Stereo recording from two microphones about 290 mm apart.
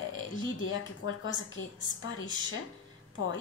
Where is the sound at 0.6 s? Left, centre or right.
Left.